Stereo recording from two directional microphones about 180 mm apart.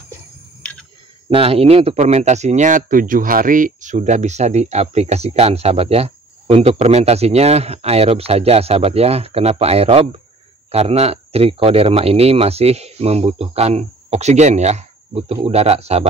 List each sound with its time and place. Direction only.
0.6 s tick-tock: 5° left (ahead or behind)
1.3 s speech: 30° right (ahead or behind)